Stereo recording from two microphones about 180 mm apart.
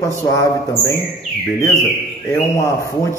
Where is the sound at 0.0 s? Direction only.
15° left (ahead or behind).